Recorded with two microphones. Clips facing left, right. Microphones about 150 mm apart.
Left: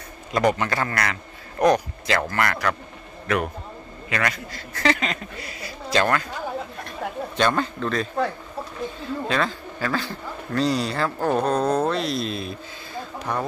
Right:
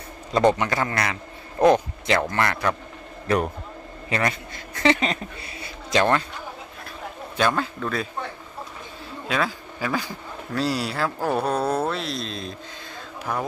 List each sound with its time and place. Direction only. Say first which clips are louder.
0.3 s a man's voice: right 2 dB; 25° right (ahead or behind)
7.3 s a man's voice: even; 5° right (ahead or behind)
9.3 s a man's voice: right 1 dB; 10° right (ahead or behind)
13.2 s speech: even; 5° right (ahead or behind)